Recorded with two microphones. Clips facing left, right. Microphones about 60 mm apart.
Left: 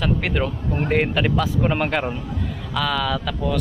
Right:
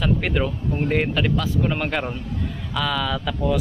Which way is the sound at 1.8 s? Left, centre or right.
Centre.